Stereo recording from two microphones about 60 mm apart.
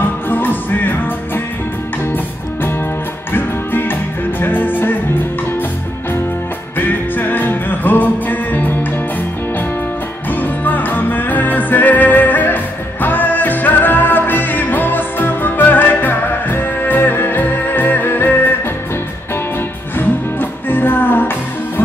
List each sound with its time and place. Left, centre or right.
0.0 s music: left
3.3 s music: left
6.8 s music: left
10.4 s music: left
20.0 s music: left